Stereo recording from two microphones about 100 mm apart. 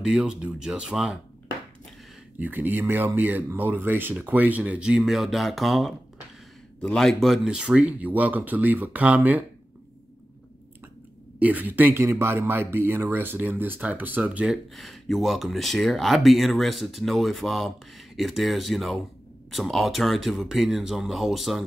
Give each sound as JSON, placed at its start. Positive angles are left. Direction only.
{"t": 0.0, "sound": "speech", "side_deg": -5}
{"t": 2.3, "sound": "speech", "side_deg": -20}
{"t": 11.3, "sound": "speech", "side_deg": -15}